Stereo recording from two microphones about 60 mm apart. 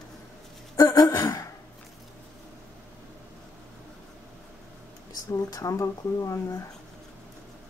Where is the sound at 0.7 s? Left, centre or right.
Left.